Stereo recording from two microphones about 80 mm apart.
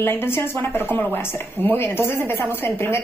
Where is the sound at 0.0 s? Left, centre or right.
Left.